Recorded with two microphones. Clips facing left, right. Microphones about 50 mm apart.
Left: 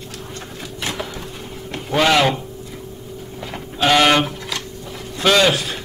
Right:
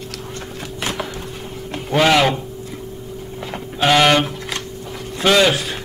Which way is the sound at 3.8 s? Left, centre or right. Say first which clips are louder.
Even; centre.